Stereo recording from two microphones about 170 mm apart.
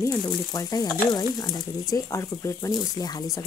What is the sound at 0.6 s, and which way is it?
Speech, 20° left (ahead or behind).